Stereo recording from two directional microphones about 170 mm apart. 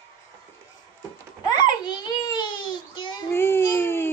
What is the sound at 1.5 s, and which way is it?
Babbling, 25° left (ahead or behind).